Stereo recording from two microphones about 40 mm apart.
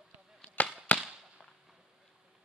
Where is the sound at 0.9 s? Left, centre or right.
Left.